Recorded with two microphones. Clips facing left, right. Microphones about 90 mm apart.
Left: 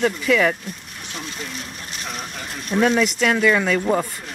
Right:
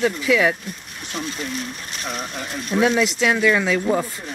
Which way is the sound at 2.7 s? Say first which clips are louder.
Even; 5° right (ahead or behind).